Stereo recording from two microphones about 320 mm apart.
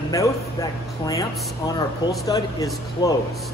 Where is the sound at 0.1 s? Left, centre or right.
Centre.